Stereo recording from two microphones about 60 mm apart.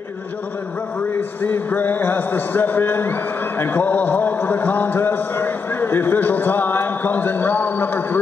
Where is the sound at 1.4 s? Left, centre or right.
Left.